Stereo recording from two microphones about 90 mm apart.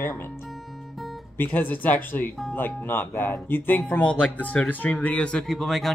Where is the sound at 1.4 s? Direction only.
20° left (ahead or behind).